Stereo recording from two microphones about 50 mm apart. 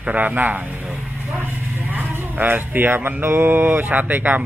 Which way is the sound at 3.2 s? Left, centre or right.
Right.